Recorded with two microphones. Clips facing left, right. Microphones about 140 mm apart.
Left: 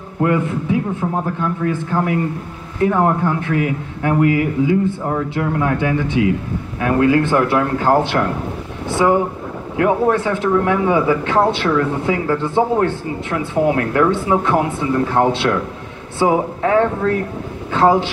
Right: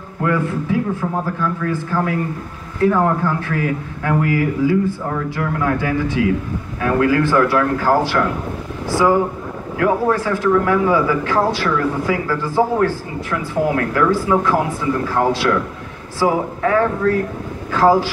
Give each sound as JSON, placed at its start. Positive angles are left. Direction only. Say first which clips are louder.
{"t": 0.2, "sound": "a man's voice", "louder": "left 2 dB", "side_deg": 20}